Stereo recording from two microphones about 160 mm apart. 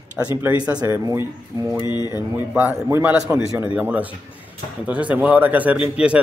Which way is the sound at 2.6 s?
15° right (ahead or behind).